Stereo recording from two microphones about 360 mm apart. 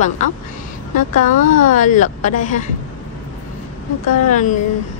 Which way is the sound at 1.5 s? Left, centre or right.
Left.